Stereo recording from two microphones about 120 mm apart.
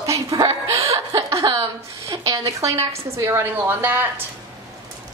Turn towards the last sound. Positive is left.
turn(degrees=-15)  # may be behind; listen again after turning